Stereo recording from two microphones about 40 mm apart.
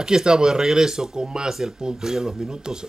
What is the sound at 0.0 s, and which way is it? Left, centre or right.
Speech, centre.